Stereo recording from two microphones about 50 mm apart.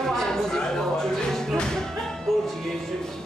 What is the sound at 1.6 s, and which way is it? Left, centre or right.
Music, centre.